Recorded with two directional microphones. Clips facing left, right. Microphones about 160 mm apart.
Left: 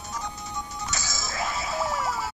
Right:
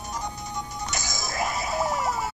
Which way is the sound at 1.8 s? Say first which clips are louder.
Right 2 dB; 15° right (ahead or behind).